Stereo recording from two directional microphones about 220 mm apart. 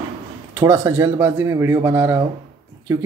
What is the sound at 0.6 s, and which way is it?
Speech, 15° right (ahead or behind).